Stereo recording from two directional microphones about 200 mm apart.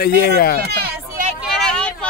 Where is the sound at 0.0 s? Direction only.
50° left (ahead or behind).